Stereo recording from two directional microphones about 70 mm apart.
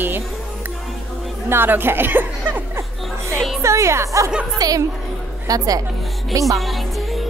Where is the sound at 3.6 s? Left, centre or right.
Right.